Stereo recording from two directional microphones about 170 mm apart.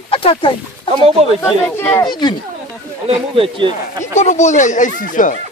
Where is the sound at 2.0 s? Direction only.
25° left (ahead or behind).